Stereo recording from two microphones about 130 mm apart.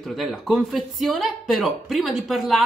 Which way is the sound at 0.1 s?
Centre (ahead or behind).